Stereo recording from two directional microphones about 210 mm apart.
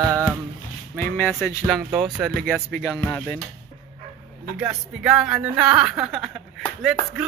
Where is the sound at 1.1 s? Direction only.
10° left (ahead or behind).